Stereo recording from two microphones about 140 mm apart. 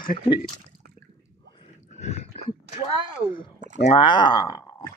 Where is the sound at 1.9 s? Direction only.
55° left (ahead or behind).